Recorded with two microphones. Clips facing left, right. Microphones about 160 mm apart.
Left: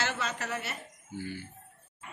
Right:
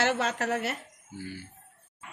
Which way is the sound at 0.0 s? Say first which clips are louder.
Right 7 dB; 65° right (ahead or behind).